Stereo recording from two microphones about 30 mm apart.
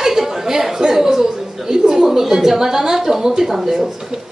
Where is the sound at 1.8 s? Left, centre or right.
Centre.